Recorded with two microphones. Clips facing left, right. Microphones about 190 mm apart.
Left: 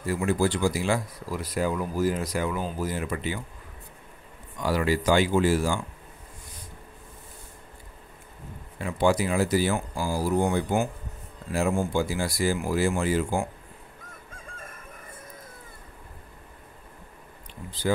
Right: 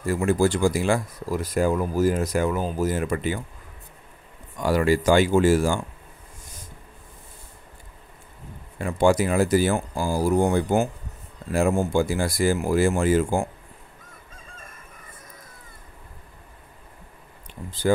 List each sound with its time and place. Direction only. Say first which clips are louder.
0.0 s speech: right 4 dB; 45° right (ahead or behind)
4.6 s speech: right 4 dB; 50° right (ahead or behind)
8.7 s speech: right 4 dB; 50° right (ahead or behind)